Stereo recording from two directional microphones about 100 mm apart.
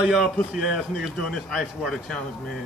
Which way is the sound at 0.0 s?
Centre (ahead or behind).